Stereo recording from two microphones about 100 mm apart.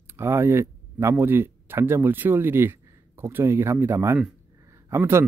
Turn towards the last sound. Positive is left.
turn(degrees=-25)  # may be behind; listen again after turning